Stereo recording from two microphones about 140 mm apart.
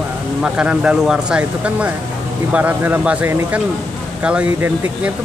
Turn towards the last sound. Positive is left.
turn(degrees=-10)  # may be behind; listen again after turning